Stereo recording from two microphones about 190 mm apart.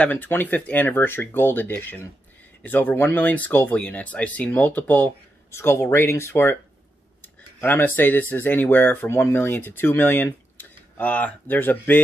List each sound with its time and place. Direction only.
0.0 s speech: 10° left (ahead or behind)